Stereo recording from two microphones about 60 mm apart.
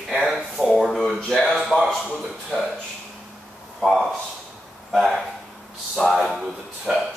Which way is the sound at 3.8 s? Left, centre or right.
Centre.